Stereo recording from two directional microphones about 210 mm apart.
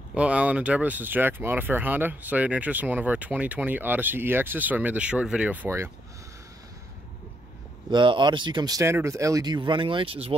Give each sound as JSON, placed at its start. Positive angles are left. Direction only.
{"t": 0.1, "sound": "speech", "side_deg": -5}
{"t": 7.9, "sound": "speech", "side_deg": -20}